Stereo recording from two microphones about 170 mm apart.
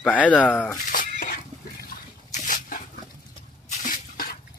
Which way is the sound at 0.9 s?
55° left (ahead or behind).